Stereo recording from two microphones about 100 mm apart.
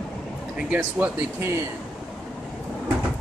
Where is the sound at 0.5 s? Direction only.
15° right (ahead or behind).